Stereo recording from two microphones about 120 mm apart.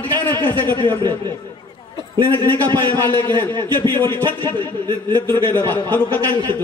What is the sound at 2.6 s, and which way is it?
Speech, 40° right (ahead or behind).